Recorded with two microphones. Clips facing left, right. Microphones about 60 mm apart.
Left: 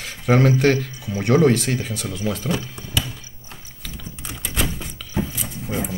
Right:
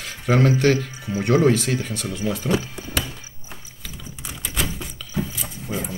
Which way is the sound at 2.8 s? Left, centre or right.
Right.